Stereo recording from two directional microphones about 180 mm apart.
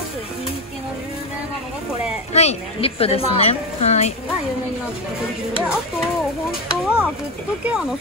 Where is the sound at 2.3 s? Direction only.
35° left (ahead or behind).